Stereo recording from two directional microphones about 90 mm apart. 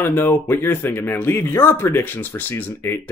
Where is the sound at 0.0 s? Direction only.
25° left (ahead or behind).